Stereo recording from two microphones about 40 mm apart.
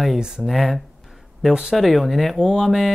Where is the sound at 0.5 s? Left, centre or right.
Centre.